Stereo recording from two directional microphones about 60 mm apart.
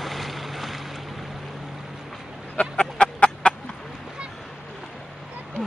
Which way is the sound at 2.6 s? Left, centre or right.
Centre.